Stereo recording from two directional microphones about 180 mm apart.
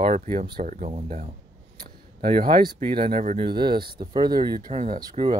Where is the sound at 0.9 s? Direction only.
30° right (ahead or behind).